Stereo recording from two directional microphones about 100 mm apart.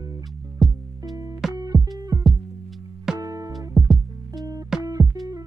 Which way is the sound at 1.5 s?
35° right (ahead or behind).